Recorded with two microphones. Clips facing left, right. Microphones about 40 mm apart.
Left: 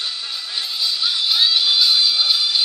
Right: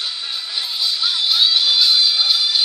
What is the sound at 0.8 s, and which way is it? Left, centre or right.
Music, centre.